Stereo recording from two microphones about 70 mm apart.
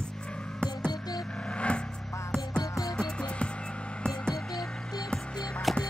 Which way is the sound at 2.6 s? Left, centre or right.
Left.